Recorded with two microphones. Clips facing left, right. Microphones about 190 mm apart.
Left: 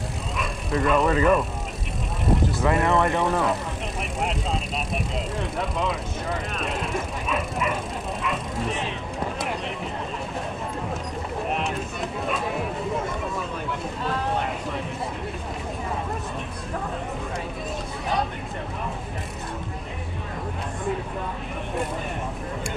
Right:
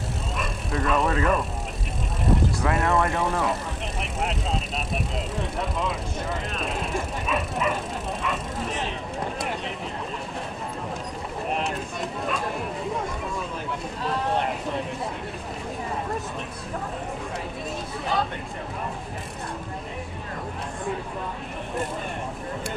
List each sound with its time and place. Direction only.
0.4 s speech: centre (ahead or behind)
2.6 s speech: centre (ahead or behind)
11.5 s a sound: centre (ahead or behind)